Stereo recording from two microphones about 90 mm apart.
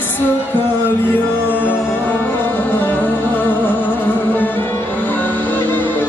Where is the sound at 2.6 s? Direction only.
20° left (ahead or behind).